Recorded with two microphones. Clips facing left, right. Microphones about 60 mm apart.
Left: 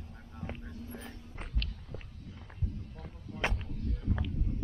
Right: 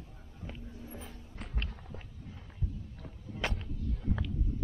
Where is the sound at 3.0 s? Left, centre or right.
Left.